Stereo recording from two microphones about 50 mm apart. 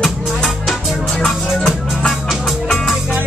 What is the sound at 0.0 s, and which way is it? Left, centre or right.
Music, centre.